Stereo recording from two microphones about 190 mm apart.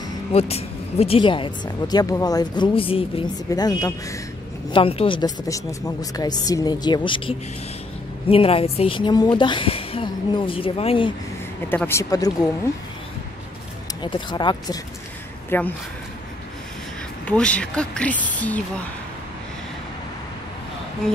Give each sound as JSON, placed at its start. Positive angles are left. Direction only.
{"t": 0.3, "sound": "speech", "side_deg": 35}
{"t": 11.7, "sound": "speech", "side_deg": 10}
{"t": 14.0, "sound": "speech", "side_deg": 25}
{"t": 15.5, "sound": "speech", "side_deg": 10}
{"t": 17.3, "sound": "speech", "side_deg": 5}